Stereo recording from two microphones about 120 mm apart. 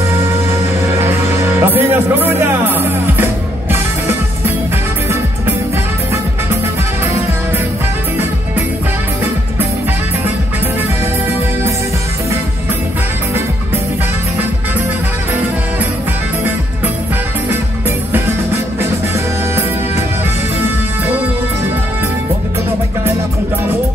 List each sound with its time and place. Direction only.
1.0 s music: 20° right (ahead or behind)